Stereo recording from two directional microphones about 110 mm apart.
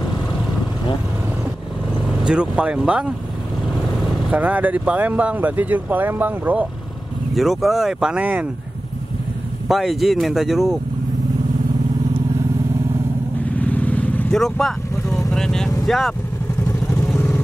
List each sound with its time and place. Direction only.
2.2 s speech: 10° right (ahead or behind)
4.3 s speech: 15° right (ahead or behind)
7.3 s speech: centre (ahead or behind)
9.7 s speech: centre (ahead or behind)
13.6 s vehicle: 15° left (ahead or behind)
14.3 s vehicle: 5° left (ahead or behind)
15.8 s speech: centre (ahead or behind)
17.0 s vehicle: 10° left (ahead or behind)